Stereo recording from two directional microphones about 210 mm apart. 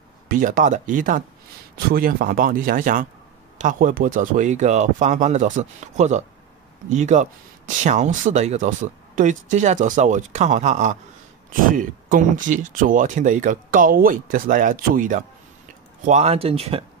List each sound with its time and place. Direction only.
0.3 s speech: 40° right (ahead or behind)